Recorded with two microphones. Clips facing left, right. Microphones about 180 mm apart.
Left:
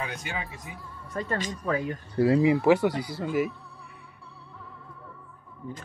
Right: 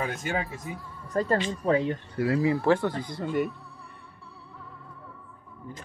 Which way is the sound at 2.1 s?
25° left (ahead or behind).